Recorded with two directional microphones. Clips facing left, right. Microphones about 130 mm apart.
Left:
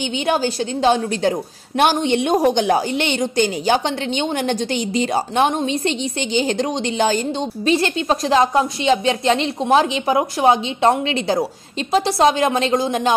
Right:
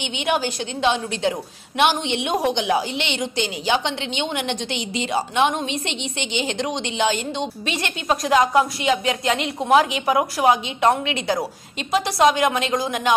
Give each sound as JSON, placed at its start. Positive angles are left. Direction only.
{"t": 0.3, "sound": "a woman's voice", "side_deg": 35}